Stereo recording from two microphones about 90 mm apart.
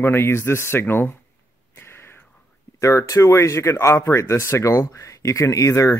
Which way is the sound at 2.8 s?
35° left (ahead or behind).